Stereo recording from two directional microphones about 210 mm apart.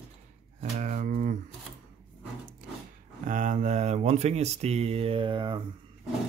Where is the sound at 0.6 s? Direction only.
35° right (ahead or behind).